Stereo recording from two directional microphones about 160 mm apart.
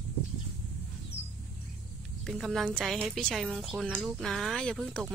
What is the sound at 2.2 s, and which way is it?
Speech, centre (ahead or behind).